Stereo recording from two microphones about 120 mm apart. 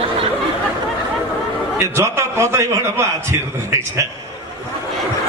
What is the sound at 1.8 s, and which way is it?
A man's voice, 20° right (ahead or behind).